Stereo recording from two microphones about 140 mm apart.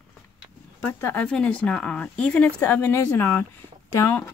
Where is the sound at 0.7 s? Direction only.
10° left (ahead or behind).